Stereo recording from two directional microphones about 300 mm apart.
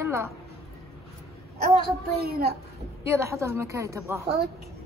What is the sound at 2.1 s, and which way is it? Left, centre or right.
Speech, right.